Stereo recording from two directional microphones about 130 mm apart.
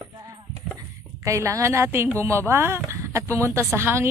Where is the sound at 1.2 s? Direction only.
20° right (ahead or behind).